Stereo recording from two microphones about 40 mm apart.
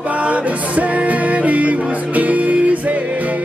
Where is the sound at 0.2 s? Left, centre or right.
Right.